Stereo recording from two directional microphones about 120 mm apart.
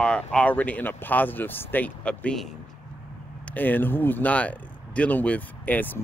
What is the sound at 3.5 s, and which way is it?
Speech, 15° left (ahead or behind).